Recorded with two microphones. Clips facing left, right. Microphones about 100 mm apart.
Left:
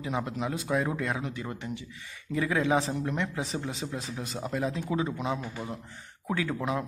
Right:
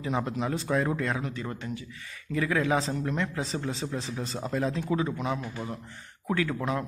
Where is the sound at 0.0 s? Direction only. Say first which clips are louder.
Right 2 dB; 10° left (ahead or behind).